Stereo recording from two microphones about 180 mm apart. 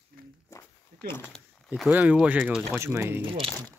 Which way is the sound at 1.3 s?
5° right (ahead or behind).